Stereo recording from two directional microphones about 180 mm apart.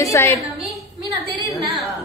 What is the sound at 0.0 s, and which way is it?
Speech, 15° left (ahead or behind).